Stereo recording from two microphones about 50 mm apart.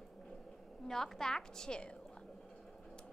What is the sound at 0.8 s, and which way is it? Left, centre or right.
A woman's voice, centre.